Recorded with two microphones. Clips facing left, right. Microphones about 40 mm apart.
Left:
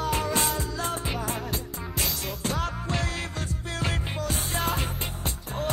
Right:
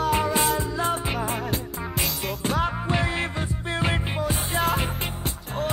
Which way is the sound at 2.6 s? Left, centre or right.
Right.